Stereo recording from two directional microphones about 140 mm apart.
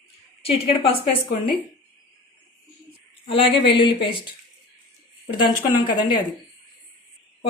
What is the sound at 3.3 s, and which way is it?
Speech, 40° left (ahead or behind).